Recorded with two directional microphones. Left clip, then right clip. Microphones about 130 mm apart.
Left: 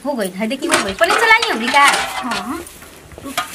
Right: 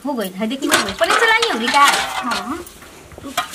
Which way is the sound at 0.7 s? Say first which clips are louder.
Left 1 dB; 15° right (ahead or behind).